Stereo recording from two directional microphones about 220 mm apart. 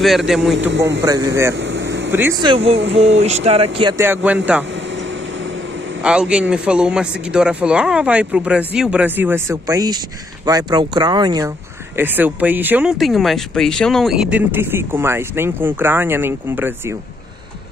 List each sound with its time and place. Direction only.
0.0 s speech: centre (ahead or behind)
0.6 s a man's voice: 55° right (ahead or behind)
1.0 s speech: 15° right (ahead or behind)
1.5 s vehicle: 55° right (ahead or behind)
2.0 s speech: 10° right (ahead or behind)
2.5 s speech: 25° right (ahead or behind)
4.0 s speech: 10° right (ahead or behind)
6.0 s speech: 5° right (ahead or behind)